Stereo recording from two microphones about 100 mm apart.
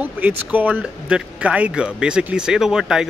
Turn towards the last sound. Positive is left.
turn(degrees=-5)  # may be behind; listen again after turning